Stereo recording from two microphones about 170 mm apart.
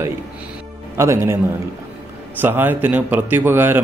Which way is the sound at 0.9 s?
15° right (ahead or behind).